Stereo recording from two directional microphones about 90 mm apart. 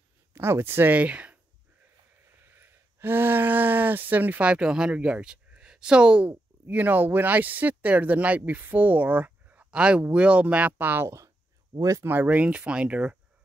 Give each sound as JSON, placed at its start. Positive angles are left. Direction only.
{"t": 0.3, "sound": "speech", "side_deg": -25}
{"t": 2.4, "sound": "speech", "side_deg": -25}
{"t": 12.1, "sound": "speech", "side_deg": -15}